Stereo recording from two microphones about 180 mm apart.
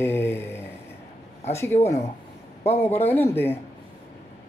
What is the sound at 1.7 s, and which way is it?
Speech, 35° left (ahead or behind).